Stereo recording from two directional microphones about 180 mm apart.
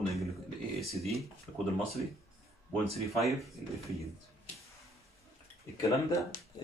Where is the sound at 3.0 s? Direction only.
Centre (ahead or behind).